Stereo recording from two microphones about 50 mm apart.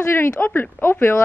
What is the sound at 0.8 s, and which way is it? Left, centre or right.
Speech, left.